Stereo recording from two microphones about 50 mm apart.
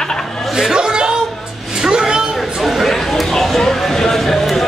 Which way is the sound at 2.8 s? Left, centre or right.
Centre.